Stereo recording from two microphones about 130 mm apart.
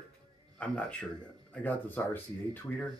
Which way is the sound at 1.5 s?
10° left (ahead or behind).